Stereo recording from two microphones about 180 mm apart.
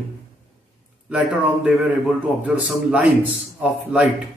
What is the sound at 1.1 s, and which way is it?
A man's voice, 5° right (ahead or behind).